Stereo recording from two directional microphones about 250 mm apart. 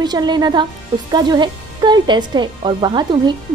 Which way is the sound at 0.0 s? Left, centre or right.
Centre.